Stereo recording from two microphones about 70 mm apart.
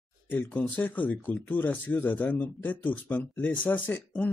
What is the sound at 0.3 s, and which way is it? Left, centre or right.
Speech, left.